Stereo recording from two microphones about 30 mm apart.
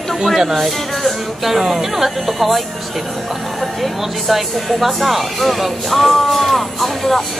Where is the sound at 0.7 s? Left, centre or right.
Centre.